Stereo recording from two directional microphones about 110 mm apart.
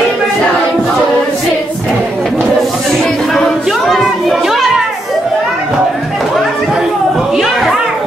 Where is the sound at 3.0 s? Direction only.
5° left (ahead or behind).